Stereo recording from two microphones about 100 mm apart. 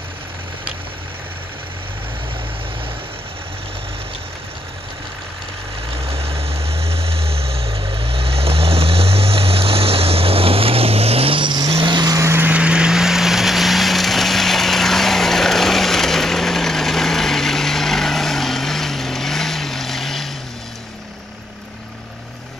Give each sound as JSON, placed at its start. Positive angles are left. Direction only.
{"t": 6.0, "sound": "vehicle", "side_deg": -75}
{"t": 12.2, "sound": "vehicle", "side_deg": -25}